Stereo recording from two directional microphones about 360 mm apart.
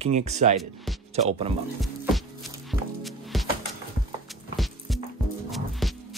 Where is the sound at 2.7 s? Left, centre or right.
Centre.